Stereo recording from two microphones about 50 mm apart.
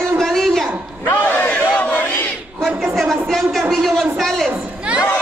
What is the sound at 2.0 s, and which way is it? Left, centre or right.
Battle cry, left.